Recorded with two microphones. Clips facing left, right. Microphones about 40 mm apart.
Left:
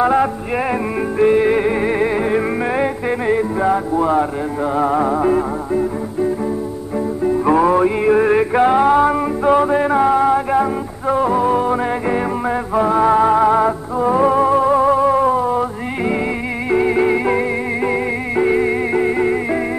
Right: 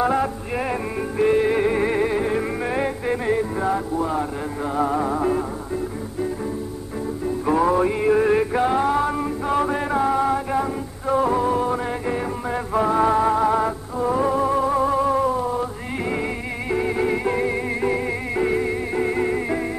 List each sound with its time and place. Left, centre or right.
0.0 s music: left
4.0 s speech: left
4.7 s music: left
7.4 s music: left
12.7 s music: centre
13.1 s music: left
16.6 s music: left